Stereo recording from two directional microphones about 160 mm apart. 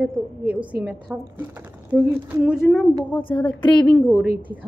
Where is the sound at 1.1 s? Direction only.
10° right (ahead or behind).